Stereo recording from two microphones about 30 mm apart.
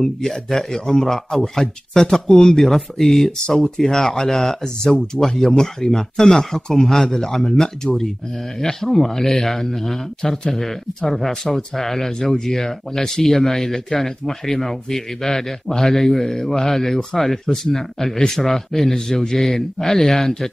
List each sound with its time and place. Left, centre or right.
0.0 s speech: centre
2.6 s speech: centre
3.6 s speech: centre